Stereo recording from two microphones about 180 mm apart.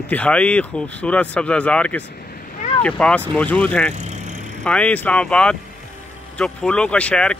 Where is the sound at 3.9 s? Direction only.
40° right (ahead or behind).